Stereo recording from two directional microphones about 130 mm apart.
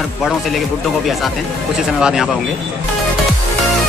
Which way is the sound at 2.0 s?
5° right (ahead or behind).